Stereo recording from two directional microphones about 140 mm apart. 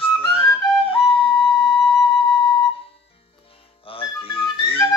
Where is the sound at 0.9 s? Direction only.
40° left (ahead or behind).